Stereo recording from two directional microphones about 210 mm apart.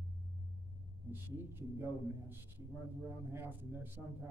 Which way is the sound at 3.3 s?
10° right (ahead or behind).